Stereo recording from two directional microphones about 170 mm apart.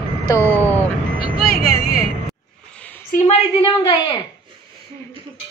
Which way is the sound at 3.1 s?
40° left (ahead or behind).